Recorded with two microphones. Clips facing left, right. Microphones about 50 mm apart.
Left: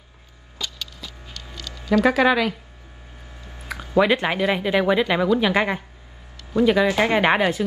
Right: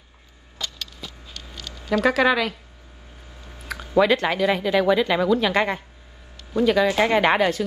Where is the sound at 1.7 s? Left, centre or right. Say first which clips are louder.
Left 1 dB; right.